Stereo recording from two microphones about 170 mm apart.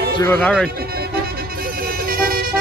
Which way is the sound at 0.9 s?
60° right (ahead or behind).